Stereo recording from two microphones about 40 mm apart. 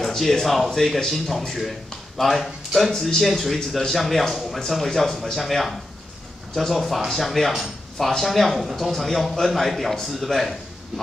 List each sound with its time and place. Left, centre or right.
0.0 s speech: centre
3.5 s speech: centre